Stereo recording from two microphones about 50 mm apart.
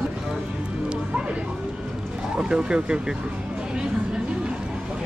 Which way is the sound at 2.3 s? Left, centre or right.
Centre.